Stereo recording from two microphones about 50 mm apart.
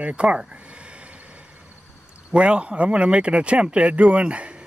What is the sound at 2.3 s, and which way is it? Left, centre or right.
Speech, right.